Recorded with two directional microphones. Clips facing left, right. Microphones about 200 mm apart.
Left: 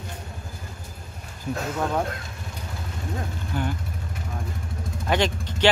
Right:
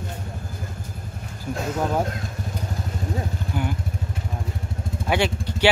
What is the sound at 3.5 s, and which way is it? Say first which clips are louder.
Vehicle: even; 10° right (ahead or behind).